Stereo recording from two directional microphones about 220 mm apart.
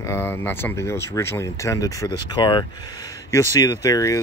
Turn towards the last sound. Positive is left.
turn(degrees=15)  # may be behind; listen again after turning